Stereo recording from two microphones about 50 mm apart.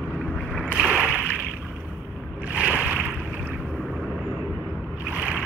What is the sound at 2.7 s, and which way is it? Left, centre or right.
Boat, right.